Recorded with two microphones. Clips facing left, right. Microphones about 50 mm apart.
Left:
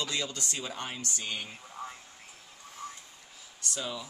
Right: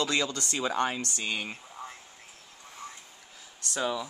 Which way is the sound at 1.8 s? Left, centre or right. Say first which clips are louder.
Left 3 dB; centre.